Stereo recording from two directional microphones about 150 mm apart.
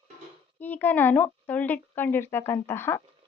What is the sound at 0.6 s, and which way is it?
Speech, 10° left (ahead or behind).